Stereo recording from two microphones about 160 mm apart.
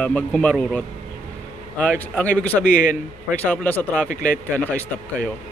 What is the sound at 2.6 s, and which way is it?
Speech, 60° left (ahead or behind).